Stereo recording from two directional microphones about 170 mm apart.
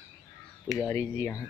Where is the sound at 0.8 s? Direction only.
15° left (ahead or behind).